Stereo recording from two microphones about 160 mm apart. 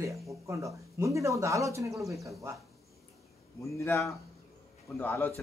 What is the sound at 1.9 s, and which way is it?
Speech, centre (ahead or behind).